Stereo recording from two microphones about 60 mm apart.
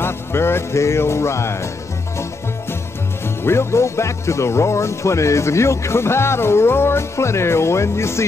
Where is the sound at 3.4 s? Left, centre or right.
Left.